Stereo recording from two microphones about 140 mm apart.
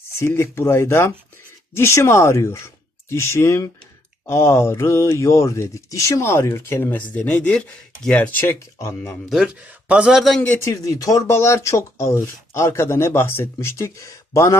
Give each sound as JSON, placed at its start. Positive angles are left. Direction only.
{"t": 0.2, "sound": "speech", "side_deg": 20}
{"t": 9.3, "sound": "a man's voice", "side_deg": -5}
{"t": 10.6, "sound": "speech", "side_deg": 25}